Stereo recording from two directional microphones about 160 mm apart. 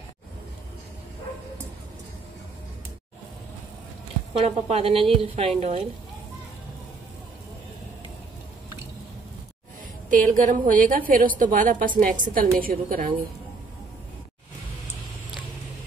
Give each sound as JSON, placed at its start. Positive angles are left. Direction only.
{"t": 4.3, "sound": "a woman's voice", "side_deg": -40}
{"t": 10.0, "sound": "a woman's voice", "side_deg": -55}